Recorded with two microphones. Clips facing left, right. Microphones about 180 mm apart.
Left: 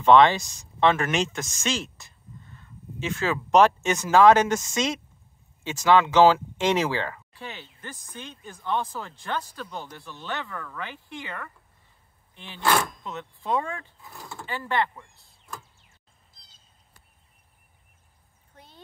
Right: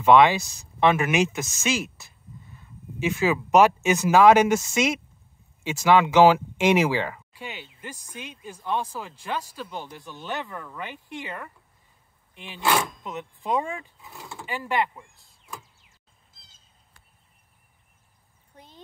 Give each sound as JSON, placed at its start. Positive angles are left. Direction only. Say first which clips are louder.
{"t": 0.0, "sound": "speech", "louder": "even", "side_deg": -10}
{"t": 14.0, "sound": "speech", "louder": "right 1 dB", "side_deg": -5}